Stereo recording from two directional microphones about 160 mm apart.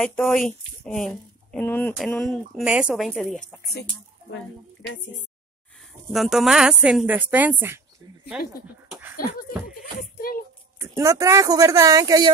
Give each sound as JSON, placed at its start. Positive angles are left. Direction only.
{"t": 0.5, "sound": "speech", "side_deg": 5}
{"t": 6.1, "sound": "a woman's voice", "side_deg": 0}
{"t": 9.1, "sound": "beatboxing", "side_deg": 65}
{"t": 9.9, "sound": "speech", "side_deg": 65}
{"t": 10.8, "sound": "speech", "side_deg": -20}